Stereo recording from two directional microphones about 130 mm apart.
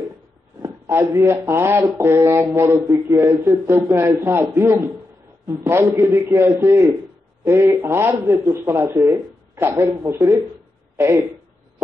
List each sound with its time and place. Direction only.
0.6 s speech: 20° right (ahead or behind)